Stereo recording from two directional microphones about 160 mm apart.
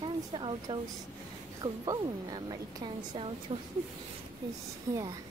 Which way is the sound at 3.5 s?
35° right (ahead or behind).